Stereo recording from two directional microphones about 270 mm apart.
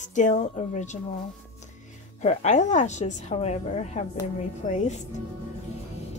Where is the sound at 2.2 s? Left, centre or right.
Left.